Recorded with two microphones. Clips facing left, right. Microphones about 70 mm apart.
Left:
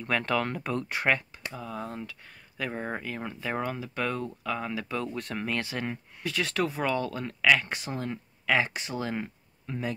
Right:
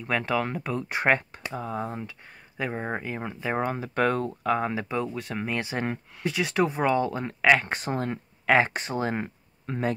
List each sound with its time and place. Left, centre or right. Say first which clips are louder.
0.0 s speech: right 1 dB; centre
0.8 s speech: right 5 dB; right
1.7 s speech: right 3 dB; right
3.5 s speech: right 7 dB; right
5.0 s speech: right 2 dB; centre; by 9.9 s right